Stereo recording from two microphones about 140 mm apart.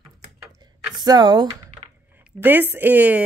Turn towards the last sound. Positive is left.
turn(degrees=-10)  # may be behind; listen again after turning